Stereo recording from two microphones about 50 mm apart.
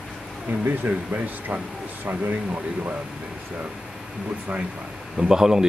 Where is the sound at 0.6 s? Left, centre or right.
Right.